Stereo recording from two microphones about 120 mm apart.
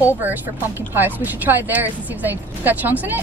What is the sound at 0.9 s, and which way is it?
Speech, 15° right (ahead or behind).